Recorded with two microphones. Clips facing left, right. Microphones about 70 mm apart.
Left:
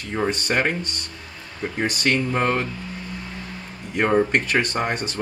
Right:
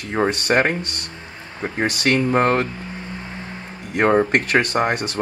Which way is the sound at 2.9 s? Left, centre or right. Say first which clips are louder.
Right 2 dB; right.